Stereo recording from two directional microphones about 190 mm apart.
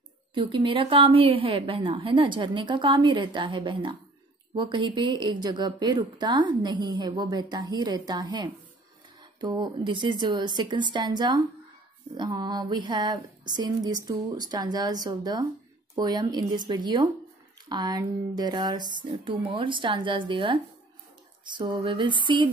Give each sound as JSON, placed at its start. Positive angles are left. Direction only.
{"t": 0.3, "sound": "a woman's voice", "side_deg": -25}